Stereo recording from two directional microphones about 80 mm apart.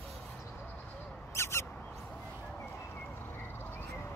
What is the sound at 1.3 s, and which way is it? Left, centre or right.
Crow, left.